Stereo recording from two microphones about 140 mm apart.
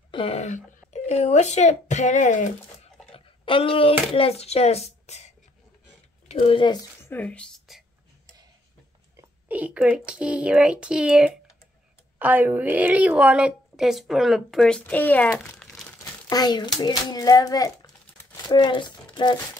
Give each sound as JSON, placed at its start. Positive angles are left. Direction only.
{"t": 0.1, "sound": "speech", "side_deg": 45}
{"t": 3.1, "sound": "a sound", "side_deg": 40}
{"t": 4.1, "sound": "speech", "side_deg": 45}
{"t": 7.0, "sound": "speech", "side_deg": 15}
{"t": 9.5, "sound": "a woman's voice", "side_deg": -10}
{"t": 16.0, "sound": "crumpling", "side_deg": 25}
{"t": 16.8, "sound": "a child's voice", "side_deg": 25}